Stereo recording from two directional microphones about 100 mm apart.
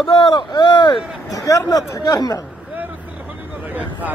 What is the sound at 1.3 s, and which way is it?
A man's voice, 35° left (ahead or behind).